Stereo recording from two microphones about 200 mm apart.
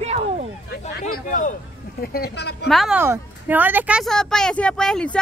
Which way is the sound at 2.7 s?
Centre (ahead or behind).